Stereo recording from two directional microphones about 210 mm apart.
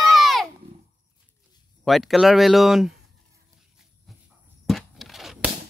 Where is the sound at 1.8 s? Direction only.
Centre (ahead or behind).